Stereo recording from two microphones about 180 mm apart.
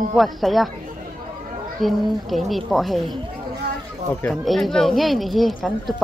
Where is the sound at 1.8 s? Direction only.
Centre (ahead or behind).